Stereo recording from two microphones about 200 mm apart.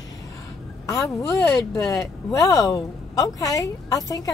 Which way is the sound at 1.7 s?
15° left (ahead or behind).